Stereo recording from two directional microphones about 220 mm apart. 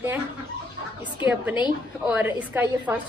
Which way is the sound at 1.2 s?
5° right (ahead or behind).